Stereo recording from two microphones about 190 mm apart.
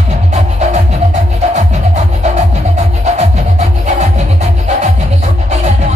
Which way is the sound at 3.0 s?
35° right (ahead or behind).